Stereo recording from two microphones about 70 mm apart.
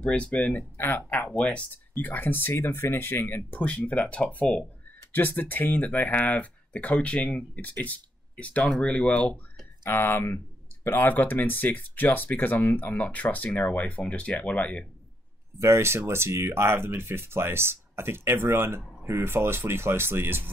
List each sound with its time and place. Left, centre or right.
0.0 s speech: centre
9.8 s speech: left; by 14.9 s centre
15.6 s speech: right